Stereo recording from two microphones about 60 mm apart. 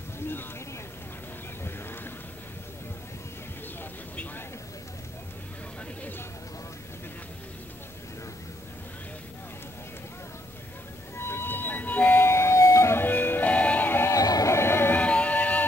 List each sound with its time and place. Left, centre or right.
1.6 s a sound: left
11.1 s vehicle: left
12.2 s music: left
13.0 s music: left
14.1 s music: left
14.5 s music: left
15.0 s music: left